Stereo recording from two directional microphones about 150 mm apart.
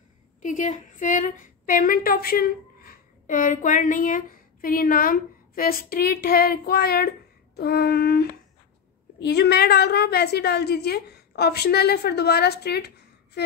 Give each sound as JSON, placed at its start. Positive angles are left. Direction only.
{"t": 0.4, "sound": "a woman's voice", "side_deg": 60}